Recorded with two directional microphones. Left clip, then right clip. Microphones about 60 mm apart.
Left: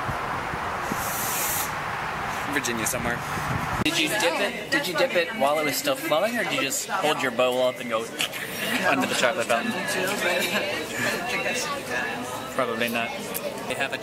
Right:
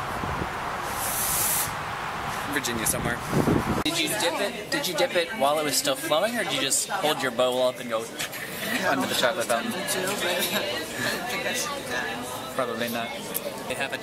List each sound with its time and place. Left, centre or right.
2.5 s speech: centre
4.9 s speech: right
8.7 s speech: centre